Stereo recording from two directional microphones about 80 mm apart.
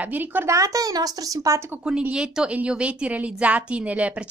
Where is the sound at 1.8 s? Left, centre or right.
Centre.